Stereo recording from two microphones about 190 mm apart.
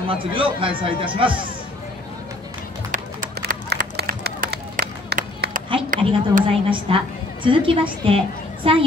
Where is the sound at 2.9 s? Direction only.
45° right (ahead or behind).